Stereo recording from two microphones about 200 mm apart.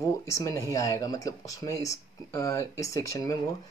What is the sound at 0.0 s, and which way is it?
Speech, 15° left (ahead or behind).